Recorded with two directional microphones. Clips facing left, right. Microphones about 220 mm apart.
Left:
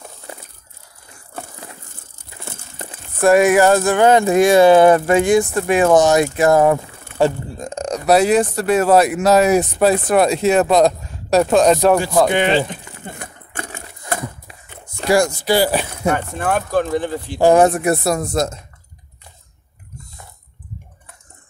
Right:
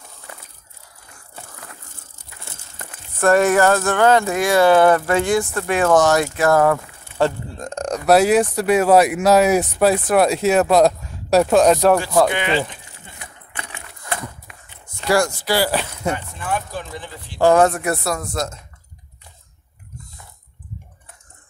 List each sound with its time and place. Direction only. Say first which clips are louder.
3.2 s speech: left 3 dB; 10° left (ahead or behind)
12.3 s speech: left 5 dB; 25° left (ahead or behind)
12.8 s a sound: left 9 dB; 55° left (ahead or behind)
15.0 s speech: left 3 dB; 15° left (ahead or behind)
16.1 s speech: left 5 dB; 55° left (ahead or behind)
17.4 s speech: left 2 dB; 15° left (ahead or behind)